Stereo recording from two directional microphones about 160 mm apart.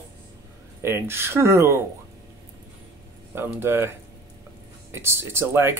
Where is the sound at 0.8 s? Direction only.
15° right (ahead or behind).